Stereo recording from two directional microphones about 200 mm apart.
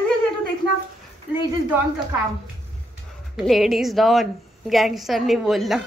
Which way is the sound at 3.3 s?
Centre (ahead or behind).